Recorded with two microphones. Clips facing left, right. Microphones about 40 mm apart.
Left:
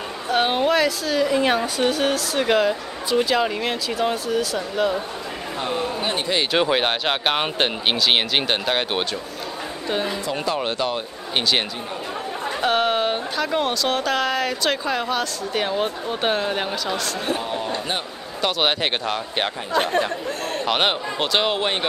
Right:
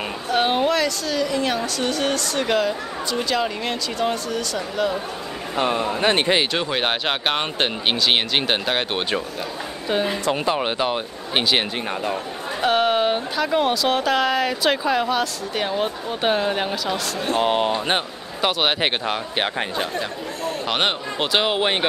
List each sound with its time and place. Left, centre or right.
0.3 s speech: centre
5.6 s speech: right
6.5 s speech: centre
10.4 s speech: centre
12.6 s speech: centre
17.4 s speech: right
18.8 s speech: centre
20.6 s speech: centre